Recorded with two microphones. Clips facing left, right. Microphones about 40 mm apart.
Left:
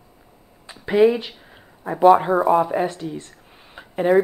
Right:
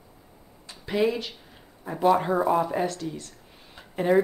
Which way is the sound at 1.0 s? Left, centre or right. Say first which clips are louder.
Left 9 dB; centre.